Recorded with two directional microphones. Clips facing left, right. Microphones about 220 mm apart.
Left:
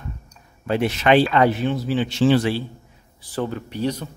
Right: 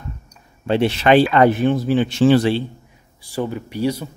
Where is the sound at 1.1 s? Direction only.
50° right (ahead or behind).